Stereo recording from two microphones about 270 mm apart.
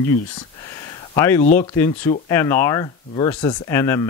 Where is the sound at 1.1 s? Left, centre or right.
Centre.